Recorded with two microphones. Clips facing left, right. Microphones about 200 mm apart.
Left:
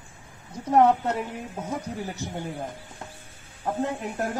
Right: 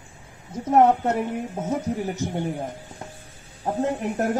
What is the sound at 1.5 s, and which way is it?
Speech, 20° right (ahead or behind).